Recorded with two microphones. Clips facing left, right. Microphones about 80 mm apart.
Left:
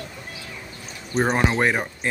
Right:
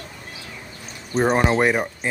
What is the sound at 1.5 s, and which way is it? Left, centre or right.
Speech, centre.